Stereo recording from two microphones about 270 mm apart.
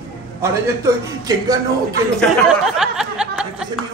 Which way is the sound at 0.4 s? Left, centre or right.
Centre.